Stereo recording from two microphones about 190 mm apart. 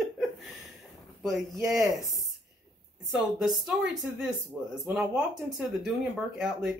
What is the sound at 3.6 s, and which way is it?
Speech, 5° right (ahead or behind).